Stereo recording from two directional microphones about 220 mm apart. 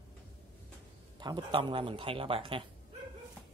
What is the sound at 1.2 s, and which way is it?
Speech, 20° right (ahead or behind).